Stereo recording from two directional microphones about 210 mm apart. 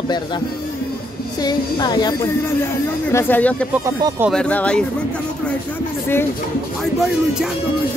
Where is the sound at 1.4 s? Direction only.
20° left (ahead or behind).